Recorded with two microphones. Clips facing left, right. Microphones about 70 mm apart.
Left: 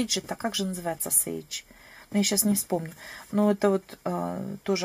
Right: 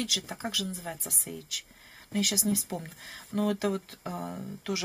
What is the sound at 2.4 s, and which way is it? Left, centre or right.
Speech, left.